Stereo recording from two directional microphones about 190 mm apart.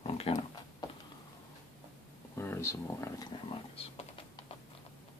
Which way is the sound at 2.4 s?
15° left (ahead or behind).